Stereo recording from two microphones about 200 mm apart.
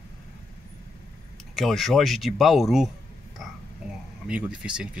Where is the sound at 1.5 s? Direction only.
Centre (ahead or behind).